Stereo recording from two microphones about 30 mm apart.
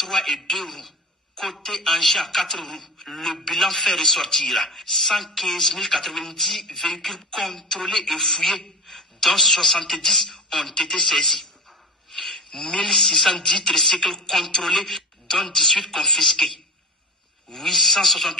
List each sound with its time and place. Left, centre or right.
0.0 s a woman's voice: centre
10.6 s a man's voice: centre
12.1 s a sound: centre
12.4 s speech: left
12.9 s a man's voice: centre